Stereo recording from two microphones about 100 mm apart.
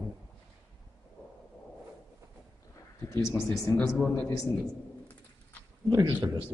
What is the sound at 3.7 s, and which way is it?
Speech, centre (ahead or behind).